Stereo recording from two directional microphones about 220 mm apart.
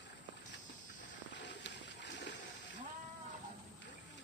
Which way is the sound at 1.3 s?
55° left (ahead or behind).